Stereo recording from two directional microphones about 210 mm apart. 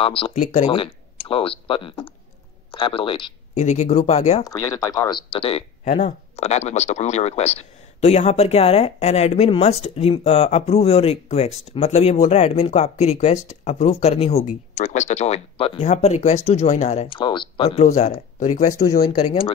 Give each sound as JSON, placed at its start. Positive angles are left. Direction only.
{"t": 0.0, "sound": "speech", "side_deg": 25}
{"t": 0.7, "sound": "speech", "side_deg": 25}
{"t": 4.5, "sound": "speech", "side_deg": 15}
{"t": 18.8, "sound": "speech", "side_deg": 15}